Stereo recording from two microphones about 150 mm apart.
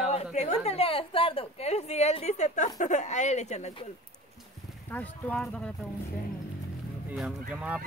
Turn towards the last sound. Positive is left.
turn(degrees=-5)  # may be behind; listen again after turning